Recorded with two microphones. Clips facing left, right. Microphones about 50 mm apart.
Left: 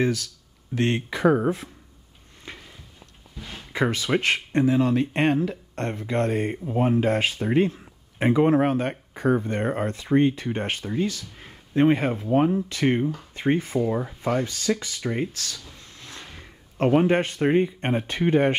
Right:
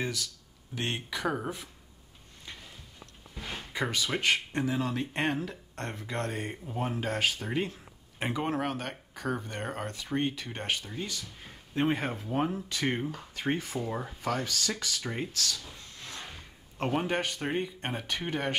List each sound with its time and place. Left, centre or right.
0.7 s speech: left
3.7 s speech: left
11.3 s a sound: centre
12.1 s speech: left
13.6 s speech: left
13.8 s speech: centre
14.2 s speech: left